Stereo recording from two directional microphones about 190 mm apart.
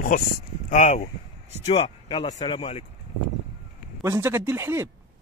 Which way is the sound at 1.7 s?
25° left (ahead or behind).